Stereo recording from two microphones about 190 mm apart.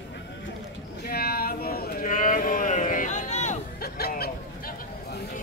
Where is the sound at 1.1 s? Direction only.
55° left (ahead or behind); by 3.5 s 40° left (ahead or behind).